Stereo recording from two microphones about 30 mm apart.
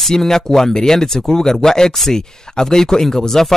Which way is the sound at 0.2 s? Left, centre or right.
Centre.